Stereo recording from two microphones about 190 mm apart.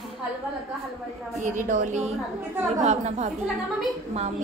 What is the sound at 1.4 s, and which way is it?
A woman's voice, 45° right (ahead or behind).